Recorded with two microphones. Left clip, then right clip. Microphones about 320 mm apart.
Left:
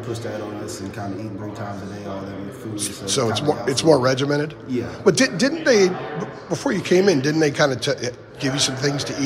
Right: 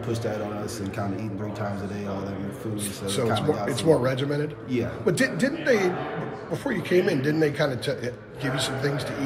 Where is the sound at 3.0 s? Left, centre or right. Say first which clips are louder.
Left 4 dB; centre.